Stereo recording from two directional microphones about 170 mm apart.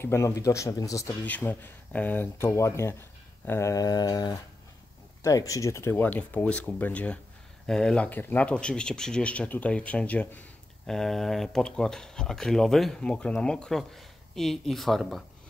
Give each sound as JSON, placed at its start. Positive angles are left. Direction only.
{"t": 0.0, "sound": "speech", "side_deg": 15}
{"t": 3.4, "sound": "a sound", "side_deg": 15}
{"t": 5.2, "sound": "speech", "side_deg": 20}